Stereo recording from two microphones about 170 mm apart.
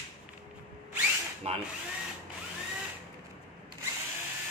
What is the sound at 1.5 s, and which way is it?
Speech, 35° right (ahead or behind).